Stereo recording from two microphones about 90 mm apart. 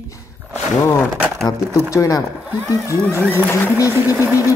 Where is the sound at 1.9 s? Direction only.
40° left (ahead or behind).